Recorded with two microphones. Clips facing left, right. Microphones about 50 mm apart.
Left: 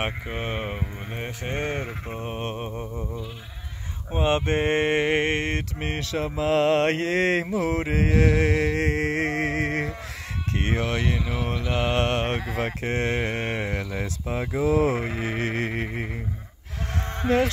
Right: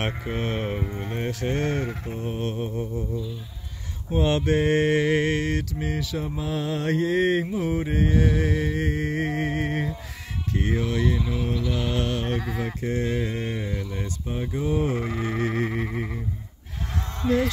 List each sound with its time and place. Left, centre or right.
0.0 s mantra: centre; by 2.9 s left
4.1 s mantra: left
4.4 s mantra: left
10.5 s speech: left
11.5 s speech: left
12.5 s mantra: left
17.2 s speech: left